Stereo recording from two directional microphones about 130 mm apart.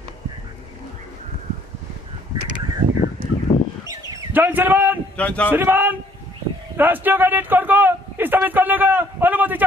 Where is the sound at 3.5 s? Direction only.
35° left (ahead or behind).